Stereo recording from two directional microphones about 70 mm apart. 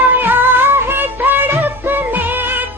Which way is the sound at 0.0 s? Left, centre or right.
Right.